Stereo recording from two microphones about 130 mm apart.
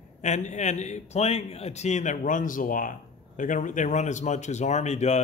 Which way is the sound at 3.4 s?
80° left.